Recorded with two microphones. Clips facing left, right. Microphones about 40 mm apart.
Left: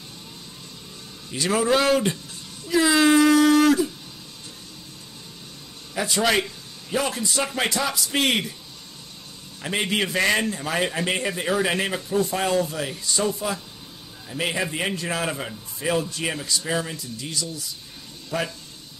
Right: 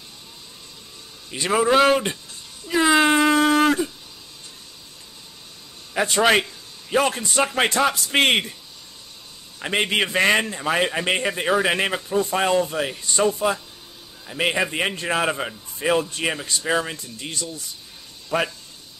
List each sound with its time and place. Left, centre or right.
1.3 s a man's voice: centre
2.7 s a sound: right
5.9 s a man's voice: right
9.6 s a man's voice: right